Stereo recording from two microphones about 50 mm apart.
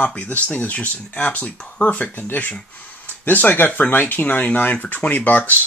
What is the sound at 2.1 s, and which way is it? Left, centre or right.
Speech, left.